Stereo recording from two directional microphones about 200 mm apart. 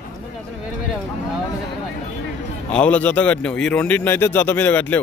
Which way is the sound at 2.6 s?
5° left (ahead or behind).